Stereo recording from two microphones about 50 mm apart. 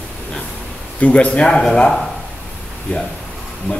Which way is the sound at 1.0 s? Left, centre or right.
Left.